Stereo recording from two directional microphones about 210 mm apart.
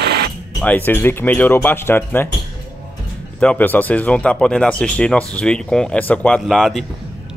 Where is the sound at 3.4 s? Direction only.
5° left (ahead or behind).